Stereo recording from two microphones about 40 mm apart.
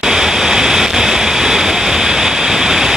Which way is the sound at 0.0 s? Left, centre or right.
Centre.